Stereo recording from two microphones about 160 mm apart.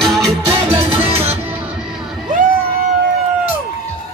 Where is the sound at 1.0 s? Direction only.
40° right (ahead or behind).